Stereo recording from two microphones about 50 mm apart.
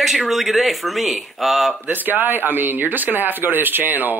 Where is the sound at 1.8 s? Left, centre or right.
Right.